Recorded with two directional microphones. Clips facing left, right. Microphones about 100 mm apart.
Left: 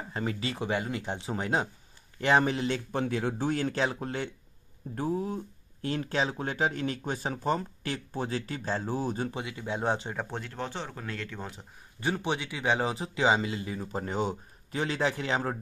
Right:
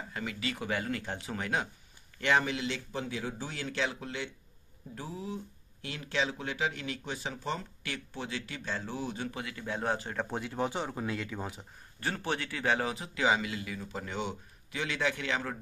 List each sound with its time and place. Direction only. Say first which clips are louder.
0.1 s speech: left 5 dB; 35° left (ahead or behind)
2.9 s speech: left 7 dB; 55° left (ahead or behind)
9.3 s speech: left 3 dB; 20° left (ahead or behind)
10.3 s speech: right 3 dB; 5° right (ahead or behind)
12.0 s speech: left 4 dB; 15° left (ahead or behind); by 15.5 s 35° left (ahead or behind)